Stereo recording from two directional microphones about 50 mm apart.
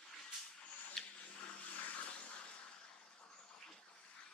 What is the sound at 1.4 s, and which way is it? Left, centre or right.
Vehicle, left.